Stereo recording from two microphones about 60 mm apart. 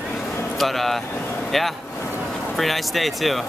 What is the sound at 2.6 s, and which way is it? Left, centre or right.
Speech, centre.